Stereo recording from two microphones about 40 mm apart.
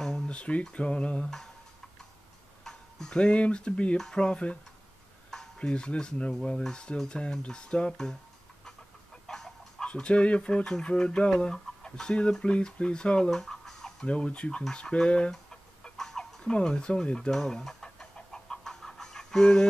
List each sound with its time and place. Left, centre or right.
0.3 s speech: left
2.6 s tick-tock: centre
3.2 s speech: left
3.9 s speech: centre
4.2 s speech: left
5.6 s speech: left
9.3 s duck: centre
9.8 s speech: left
13.3 s fowl: centre
14.0 s speech: left
15.5 s chicken: centre
16.4 s speech: left
17.3 s speech: centre
17.8 s chicken: centre